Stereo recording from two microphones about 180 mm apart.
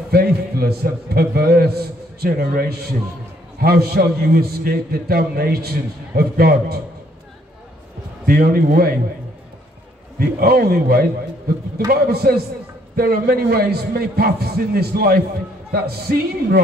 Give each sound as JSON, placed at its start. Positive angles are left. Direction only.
{"t": 0.1, "sound": "a man's voice", "side_deg": -60}
{"t": 8.3, "sound": "a man's voice", "side_deg": -55}
{"t": 10.1, "sound": "a man's voice", "side_deg": -60}